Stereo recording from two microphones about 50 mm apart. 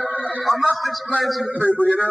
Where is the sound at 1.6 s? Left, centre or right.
Left.